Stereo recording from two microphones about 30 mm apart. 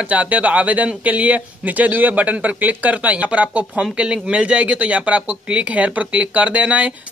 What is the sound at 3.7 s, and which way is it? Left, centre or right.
Speech, right.